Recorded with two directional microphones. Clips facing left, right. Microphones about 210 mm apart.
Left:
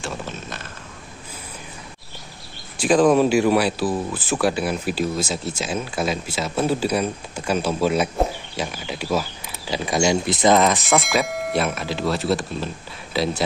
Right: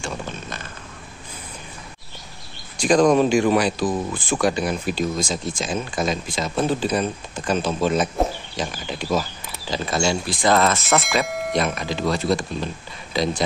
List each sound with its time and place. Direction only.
0.0 s a sound: centre (ahead or behind)
2.8 s speech: 5° left (ahead or behind)
10.8 s speech: centre (ahead or behind)